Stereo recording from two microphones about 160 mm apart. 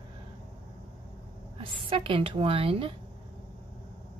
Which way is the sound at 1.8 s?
35° right (ahead or behind).